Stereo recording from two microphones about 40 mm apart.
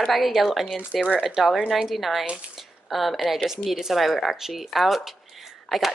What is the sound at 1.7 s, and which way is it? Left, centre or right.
Speech, centre.